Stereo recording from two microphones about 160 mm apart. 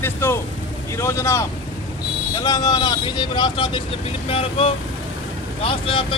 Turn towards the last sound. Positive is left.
turn(degrees=35)  # may be behind; listen again after turning